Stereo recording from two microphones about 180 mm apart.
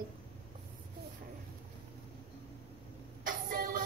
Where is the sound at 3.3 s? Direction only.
50° right (ahead or behind).